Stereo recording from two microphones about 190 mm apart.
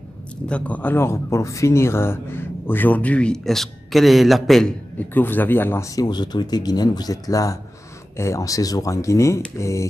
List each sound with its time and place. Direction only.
0.5 s speech: 5° left (ahead or behind)